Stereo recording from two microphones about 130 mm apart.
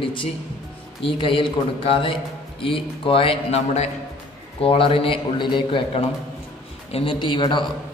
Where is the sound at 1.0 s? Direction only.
40° left (ahead or behind).